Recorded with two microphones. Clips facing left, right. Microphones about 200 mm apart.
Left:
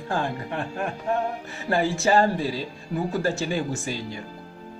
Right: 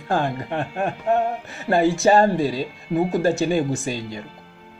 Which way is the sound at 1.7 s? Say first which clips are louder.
Right 5 dB; 20° right (ahead or behind).